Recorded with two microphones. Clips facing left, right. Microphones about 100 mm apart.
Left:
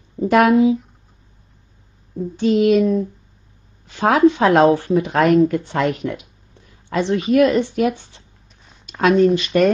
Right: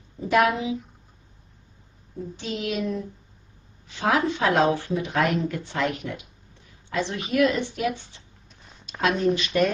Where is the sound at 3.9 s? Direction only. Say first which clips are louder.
Left 9 dB; 55° left (ahead or behind).